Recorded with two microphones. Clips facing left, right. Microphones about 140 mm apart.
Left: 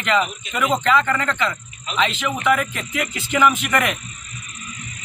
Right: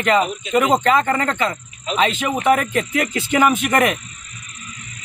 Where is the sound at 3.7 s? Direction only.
40° right (ahead or behind).